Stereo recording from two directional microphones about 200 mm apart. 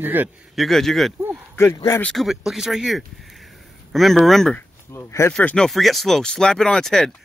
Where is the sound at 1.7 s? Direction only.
15° left (ahead or behind).